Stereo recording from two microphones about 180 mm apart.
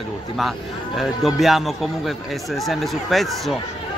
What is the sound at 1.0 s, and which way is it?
Speech, centre (ahead or behind).